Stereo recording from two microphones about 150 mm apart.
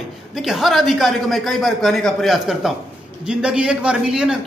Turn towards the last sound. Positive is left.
turn(degrees=-5)  # may be behind; listen again after turning